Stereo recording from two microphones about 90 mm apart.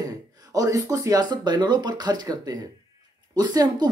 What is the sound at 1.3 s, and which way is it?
Speech, 55° right (ahead or behind).